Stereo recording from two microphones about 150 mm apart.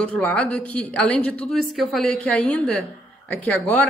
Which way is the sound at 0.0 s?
10° left (ahead or behind).